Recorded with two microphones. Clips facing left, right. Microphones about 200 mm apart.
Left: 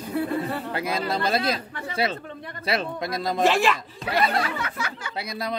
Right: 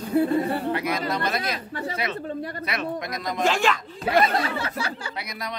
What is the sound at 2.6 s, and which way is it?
Speech, 30° left (ahead or behind).